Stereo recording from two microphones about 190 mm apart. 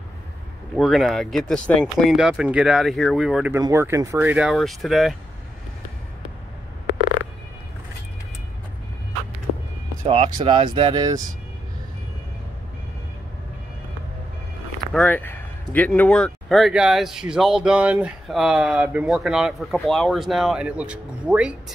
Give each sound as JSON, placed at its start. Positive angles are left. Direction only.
{"t": 0.7, "sound": "speech", "side_deg": 0}
{"t": 4.4, "sound": "speech", "side_deg": 0}
{"t": 10.0, "sound": "speech", "side_deg": -25}
{"t": 15.0, "sound": "speech", "side_deg": 10}